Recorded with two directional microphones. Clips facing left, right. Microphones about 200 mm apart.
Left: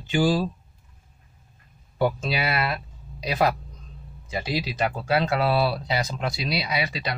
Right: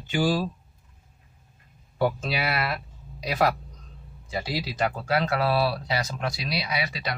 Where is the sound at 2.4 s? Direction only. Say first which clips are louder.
Left 2 dB; 25° left (ahead or behind).